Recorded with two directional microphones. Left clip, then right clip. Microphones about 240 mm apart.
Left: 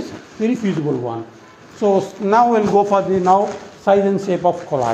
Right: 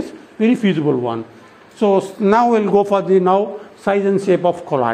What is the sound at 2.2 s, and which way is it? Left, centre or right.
Speech, right.